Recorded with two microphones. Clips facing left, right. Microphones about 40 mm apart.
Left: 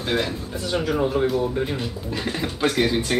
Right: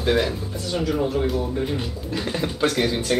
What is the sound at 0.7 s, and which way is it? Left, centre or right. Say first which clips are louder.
Speech: left 1 dB; centre.